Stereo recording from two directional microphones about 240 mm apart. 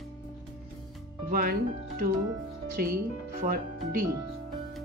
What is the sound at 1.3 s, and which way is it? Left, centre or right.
Speech, right.